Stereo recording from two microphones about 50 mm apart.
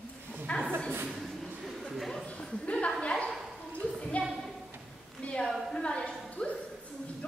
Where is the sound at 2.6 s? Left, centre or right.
Left.